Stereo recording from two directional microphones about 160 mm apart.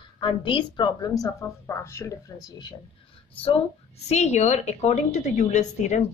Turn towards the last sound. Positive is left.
turn(degrees=50)  # may be behind; listen again after turning